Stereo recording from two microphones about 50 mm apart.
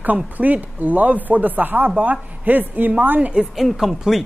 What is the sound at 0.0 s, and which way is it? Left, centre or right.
Speech, right.